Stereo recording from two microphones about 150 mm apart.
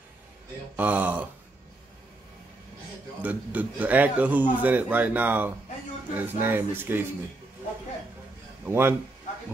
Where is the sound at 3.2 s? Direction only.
10° right (ahead or behind).